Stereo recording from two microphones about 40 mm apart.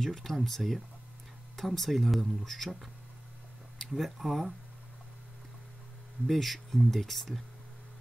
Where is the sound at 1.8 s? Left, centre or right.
Centre.